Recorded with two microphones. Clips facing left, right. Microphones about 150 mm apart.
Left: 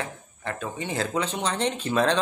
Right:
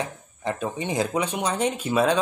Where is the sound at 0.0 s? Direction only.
15° right (ahead or behind).